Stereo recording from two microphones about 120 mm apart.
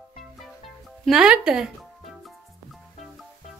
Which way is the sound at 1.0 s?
5° right (ahead or behind).